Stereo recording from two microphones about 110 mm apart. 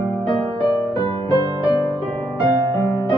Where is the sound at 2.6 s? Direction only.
25° left (ahead or behind).